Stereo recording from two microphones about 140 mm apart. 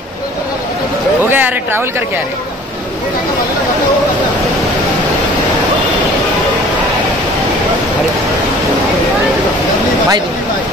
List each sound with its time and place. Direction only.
1.3 s speech: 15° right (ahead or behind)